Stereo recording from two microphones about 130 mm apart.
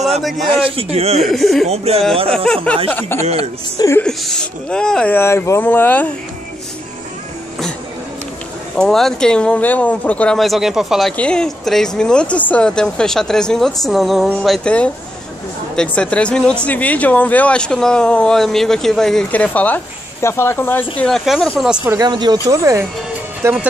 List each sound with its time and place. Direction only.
0.5 s a man's voice: 45° right (ahead or behind)
1.2 s speech: centre (ahead or behind)
1.7 s a man's voice: 50° right (ahead or behind)
2.3 s a woman's voice: 5° left (ahead or behind); by 4.0 s 25° left (ahead or behind)
4.0 s speech: 5° left (ahead or behind)
8.7 s speech: 5° left (ahead or behind)
21.1 s speech: 5° left (ahead or behind)
22.0 s speech: 30° right (ahead or behind)